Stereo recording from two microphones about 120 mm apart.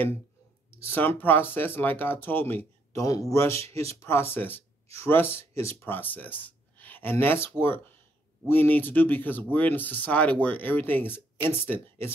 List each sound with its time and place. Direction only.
0.8 s speech: 15° left (ahead or behind)
3.0 s speech: 30° left (ahead or behind)
3.6 s speech: 55° right (ahead or behind)
4.0 s speech: 20° left (ahead or behind)